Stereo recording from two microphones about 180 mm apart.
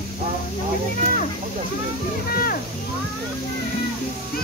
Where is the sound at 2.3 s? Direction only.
55° left (ahead or behind).